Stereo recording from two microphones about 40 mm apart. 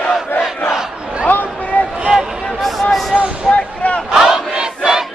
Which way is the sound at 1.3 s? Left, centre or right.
Left.